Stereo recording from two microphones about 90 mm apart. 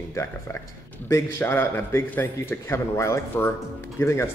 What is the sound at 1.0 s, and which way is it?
Speech, 25° left (ahead or behind).